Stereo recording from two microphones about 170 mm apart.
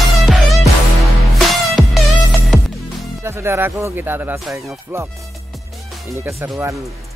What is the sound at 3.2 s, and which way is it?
Speech, 15° right (ahead or behind).